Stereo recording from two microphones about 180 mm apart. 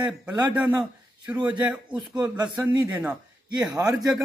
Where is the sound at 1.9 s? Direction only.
25° right (ahead or behind).